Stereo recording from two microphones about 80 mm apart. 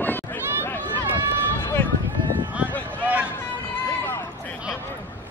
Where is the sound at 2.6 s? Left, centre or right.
Centre.